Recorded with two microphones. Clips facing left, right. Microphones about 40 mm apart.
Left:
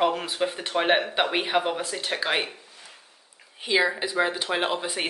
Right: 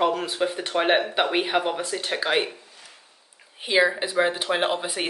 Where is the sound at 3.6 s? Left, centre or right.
Centre.